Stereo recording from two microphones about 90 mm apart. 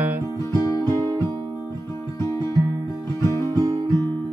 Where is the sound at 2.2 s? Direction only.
35° left (ahead or behind).